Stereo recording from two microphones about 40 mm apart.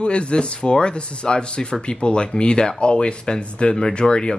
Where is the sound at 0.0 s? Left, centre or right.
Left.